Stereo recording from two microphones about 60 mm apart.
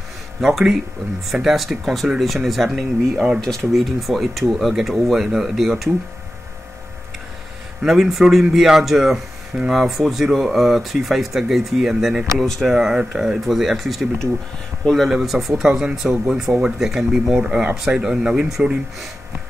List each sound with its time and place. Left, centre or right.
0.5 s speech: centre
2.7 s speech: centre
3.3 s speech: centre
7.8 s speech: centre
12.4 s speech: centre
12.7 s speech: centre
13.4 s speech: centre
15.0 s speech: centre
17.5 s speech: right
17.7 s speech: centre